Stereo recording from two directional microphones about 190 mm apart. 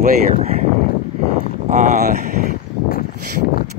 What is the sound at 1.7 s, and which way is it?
Speech, 40° right (ahead or behind).